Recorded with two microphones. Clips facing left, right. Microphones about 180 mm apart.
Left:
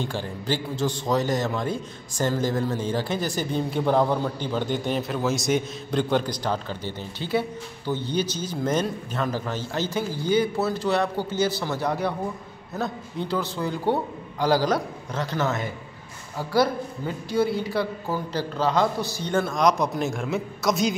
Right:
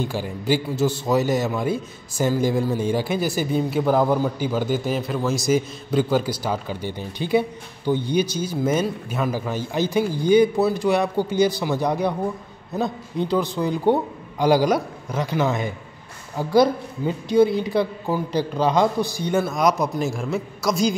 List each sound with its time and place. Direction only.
0.0 s a man's voice: 10° right (ahead or behind)